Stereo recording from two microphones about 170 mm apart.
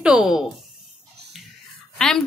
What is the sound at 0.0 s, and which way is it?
Speech, 5° right (ahead or behind).